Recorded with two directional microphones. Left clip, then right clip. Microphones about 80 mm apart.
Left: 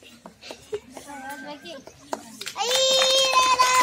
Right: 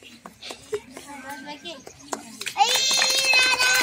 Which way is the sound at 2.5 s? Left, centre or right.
Left.